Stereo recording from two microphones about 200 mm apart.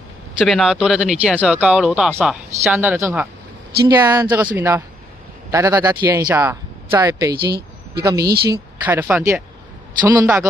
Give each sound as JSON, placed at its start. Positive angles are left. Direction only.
{"t": 0.4, "sound": "speech", "side_deg": 0}
{"t": 2.7, "sound": "speech", "side_deg": -10}
{"t": 7.3, "sound": "a woman's voice", "side_deg": -50}
{"t": 7.9, "sound": "speech", "side_deg": -15}
{"t": 8.3, "sound": "a woman's voice", "side_deg": -50}
{"t": 8.8, "sound": "speech", "side_deg": -10}